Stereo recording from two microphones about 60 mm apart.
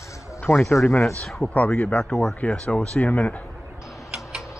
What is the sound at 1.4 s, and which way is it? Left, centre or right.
Speech, left.